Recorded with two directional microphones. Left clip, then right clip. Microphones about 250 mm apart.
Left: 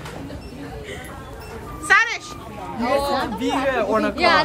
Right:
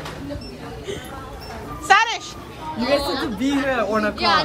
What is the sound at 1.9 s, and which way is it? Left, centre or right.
Speech, centre.